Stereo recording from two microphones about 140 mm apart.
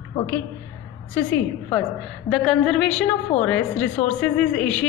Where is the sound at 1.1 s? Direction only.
10° left (ahead or behind).